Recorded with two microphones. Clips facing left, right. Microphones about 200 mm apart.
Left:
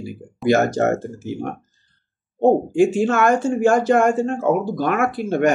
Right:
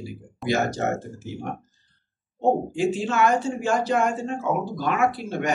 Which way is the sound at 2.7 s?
50° left (ahead or behind).